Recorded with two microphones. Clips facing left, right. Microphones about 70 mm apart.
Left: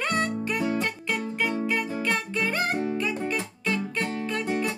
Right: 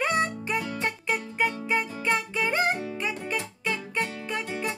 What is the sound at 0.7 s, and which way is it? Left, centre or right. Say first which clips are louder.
Music: even; right.